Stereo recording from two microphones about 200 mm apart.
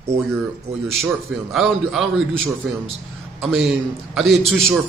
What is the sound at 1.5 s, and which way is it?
A man's voice, centre (ahead or behind).